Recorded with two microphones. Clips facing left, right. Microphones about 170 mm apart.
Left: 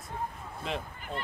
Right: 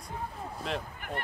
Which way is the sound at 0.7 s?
Centre (ahead or behind).